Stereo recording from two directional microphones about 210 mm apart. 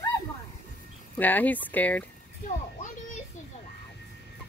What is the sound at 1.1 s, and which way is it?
Speech, 10° left (ahead or behind).